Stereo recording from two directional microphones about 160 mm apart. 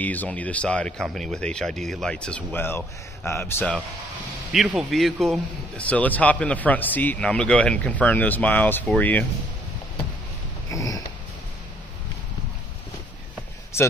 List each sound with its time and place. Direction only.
0.0 s a man's voice: 10° left (ahead or behind)
4.5 s a man's voice: centre (ahead or behind)
10.7 s sniff: 20° left (ahead or behind)
13.7 s a sound: 15° left (ahead or behind)